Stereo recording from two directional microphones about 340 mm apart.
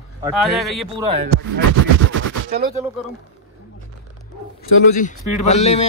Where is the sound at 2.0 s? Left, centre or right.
Right.